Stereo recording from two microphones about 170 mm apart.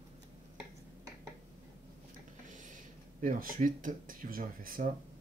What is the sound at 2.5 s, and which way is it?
Speech, 50° right (ahead or behind).